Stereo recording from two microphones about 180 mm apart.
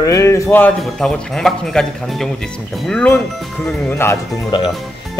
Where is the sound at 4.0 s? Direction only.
15° left (ahead or behind).